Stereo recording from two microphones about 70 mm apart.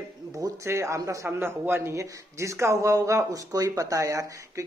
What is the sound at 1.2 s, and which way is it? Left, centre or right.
Speech, right.